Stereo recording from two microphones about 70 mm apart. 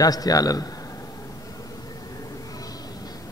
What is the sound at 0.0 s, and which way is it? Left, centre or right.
Speech, left.